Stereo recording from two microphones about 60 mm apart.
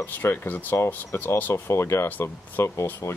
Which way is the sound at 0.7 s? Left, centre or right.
Left.